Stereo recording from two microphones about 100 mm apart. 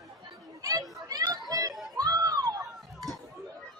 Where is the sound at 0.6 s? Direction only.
35° right (ahead or behind).